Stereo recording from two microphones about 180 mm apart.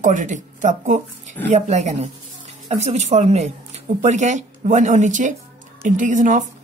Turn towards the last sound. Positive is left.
turn(degrees=-45)  # may be behind; listen again after turning